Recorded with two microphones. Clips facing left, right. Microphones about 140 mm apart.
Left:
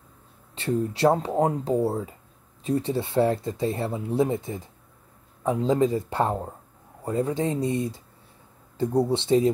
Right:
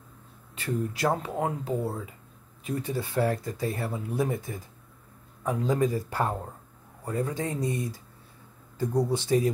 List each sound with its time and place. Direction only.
0.6 s speech: 30° left (ahead or behind)